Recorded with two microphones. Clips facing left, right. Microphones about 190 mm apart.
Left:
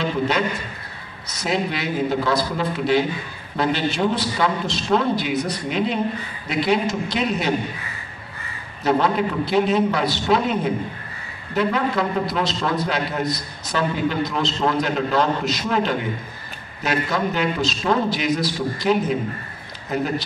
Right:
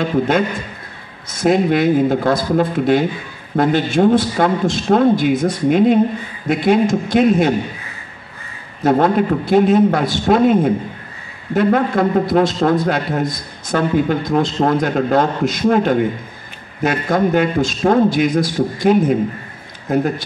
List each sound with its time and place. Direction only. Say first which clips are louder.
1.3 s a man's voice: right 10 dB; 50° right (ahead or behind)
8.8 s a man's voice: right 6 dB; 50° right (ahead or behind)